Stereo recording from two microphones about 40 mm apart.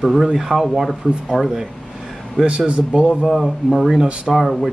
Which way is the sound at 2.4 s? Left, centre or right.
Right.